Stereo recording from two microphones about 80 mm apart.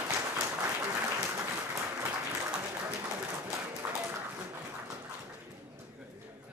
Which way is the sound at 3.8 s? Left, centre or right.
Centre.